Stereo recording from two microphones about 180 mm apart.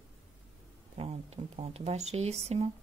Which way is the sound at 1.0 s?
35° right (ahead or behind).